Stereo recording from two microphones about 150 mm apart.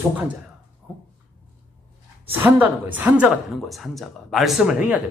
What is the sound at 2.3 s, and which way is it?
Speech, 15° right (ahead or behind).